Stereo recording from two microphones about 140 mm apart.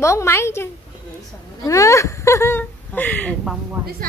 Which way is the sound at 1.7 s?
20° left (ahead or behind).